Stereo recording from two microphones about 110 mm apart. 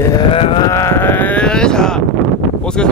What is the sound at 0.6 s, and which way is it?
Sheep, 25° left (ahead or behind).